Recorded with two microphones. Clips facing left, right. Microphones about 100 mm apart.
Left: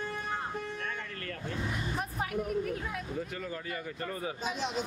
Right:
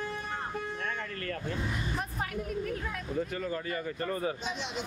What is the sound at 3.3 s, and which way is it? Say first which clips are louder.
Speech: right 4 dB; 45° right (ahead or behind).